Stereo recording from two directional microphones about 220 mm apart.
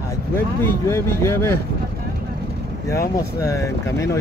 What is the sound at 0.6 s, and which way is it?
Speech, 10° left (ahead or behind).